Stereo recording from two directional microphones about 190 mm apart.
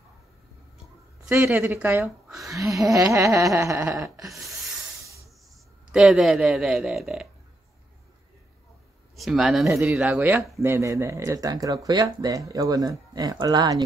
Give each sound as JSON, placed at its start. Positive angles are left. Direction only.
{"t": 1.3, "sound": "speech", "side_deg": -10}
{"t": 2.5, "sound": "speech", "side_deg": -15}
{"t": 5.9, "sound": "speech", "side_deg": 0}
{"t": 9.1, "sound": "speech", "side_deg": 0}